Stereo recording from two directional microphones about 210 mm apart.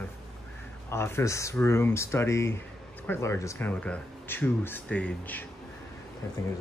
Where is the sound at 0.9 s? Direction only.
10° left (ahead or behind).